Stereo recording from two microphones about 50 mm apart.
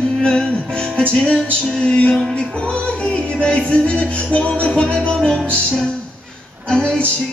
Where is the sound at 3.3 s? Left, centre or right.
Left.